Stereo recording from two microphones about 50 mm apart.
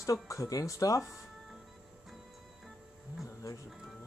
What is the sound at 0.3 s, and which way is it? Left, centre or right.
Speech, left.